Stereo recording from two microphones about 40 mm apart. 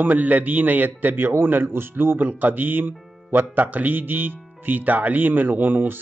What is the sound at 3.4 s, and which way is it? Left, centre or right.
Speech, right.